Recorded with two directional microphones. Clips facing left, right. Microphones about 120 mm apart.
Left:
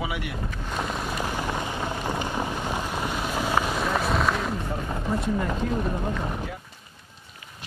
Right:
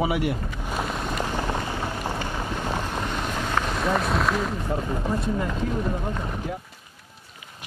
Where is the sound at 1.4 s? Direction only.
15° left (ahead or behind).